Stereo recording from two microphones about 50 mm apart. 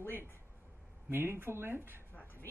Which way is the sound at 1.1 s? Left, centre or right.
Right.